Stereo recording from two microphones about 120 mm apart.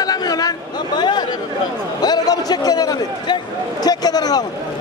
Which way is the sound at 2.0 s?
35° left (ahead or behind).